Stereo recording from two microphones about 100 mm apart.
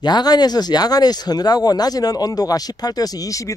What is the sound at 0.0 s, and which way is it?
Speech, 45° left (ahead or behind).